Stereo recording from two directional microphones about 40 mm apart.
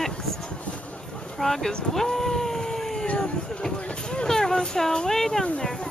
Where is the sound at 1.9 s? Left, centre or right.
Centre.